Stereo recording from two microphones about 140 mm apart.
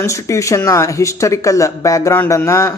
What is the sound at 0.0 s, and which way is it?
Speech, 20° left (ahead or behind).